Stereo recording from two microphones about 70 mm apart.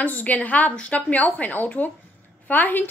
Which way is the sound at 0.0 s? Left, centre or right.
Left.